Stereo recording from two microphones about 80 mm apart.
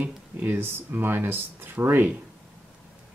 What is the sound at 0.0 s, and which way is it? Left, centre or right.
Speech, right.